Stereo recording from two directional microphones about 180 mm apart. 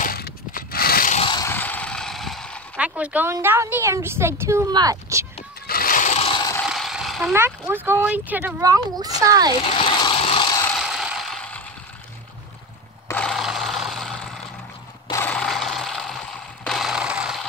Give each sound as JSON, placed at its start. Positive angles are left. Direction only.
{"t": 0.0, "sound": "a sound", "side_deg": 55}
{"t": 1.1, "sound": "vehicle", "side_deg": 30}
{"t": 1.4, "sound": "a sound", "side_deg": 10}
{"t": 2.8, "sound": "a woman's voice", "side_deg": -5}
{"t": 5.7, "sound": "scrape", "side_deg": 50}
{"t": 6.6, "sound": "vehicle", "side_deg": 0}
{"t": 7.3, "sound": "a woman's voice", "side_deg": -10}
{"t": 9.6, "sound": "vehicle", "side_deg": 30}
{"t": 10.8, "sound": "mechanisms", "side_deg": -5}
{"t": 13.1, "sound": "a sound", "side_deg": 5}